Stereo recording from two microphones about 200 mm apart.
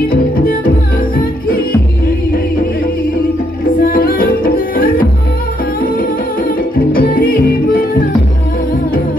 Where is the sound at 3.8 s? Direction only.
45° left (ahead or behind).